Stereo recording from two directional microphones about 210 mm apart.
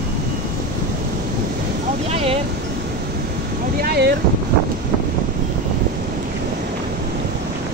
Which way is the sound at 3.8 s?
50° right (ahead or behind).